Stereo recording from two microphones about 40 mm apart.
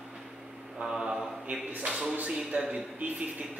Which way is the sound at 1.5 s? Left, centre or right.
Right.